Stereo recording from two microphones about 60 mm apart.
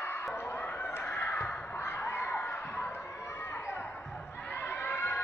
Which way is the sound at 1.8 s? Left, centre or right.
Left.